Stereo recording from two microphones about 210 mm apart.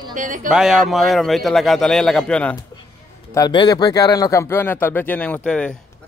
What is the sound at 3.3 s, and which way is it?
Speech, 20° left (ahead or behind).